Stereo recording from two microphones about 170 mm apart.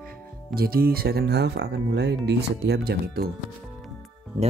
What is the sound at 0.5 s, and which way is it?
Speech, 60° right (ahead or behind).